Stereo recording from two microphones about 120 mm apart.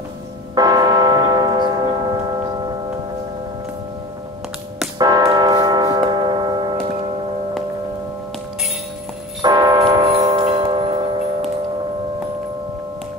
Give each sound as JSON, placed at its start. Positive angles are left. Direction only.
{"t": 0.6, "sound": "church bell", "side_deg": -35}
{"t": 4.9, "sound": "church bell", "side_deg": -35}
{"t": 9.4, "sound": "music", "side_deg": -35}
{"t": 10.0, "sound": "music", "side_deg": -55}
{"t": 10.6, "sound": "singing bowl", "side_deg": -45}